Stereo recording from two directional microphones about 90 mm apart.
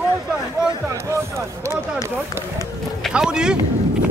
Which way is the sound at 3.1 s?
10° right (ahead or behind).